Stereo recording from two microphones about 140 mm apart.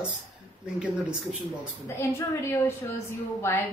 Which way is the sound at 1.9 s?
20° left (ahead or behind).